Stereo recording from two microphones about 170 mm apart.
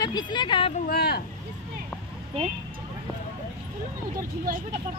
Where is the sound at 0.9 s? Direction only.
65° left (ahead or behind).